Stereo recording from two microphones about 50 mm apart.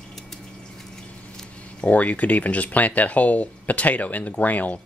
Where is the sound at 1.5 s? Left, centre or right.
Left.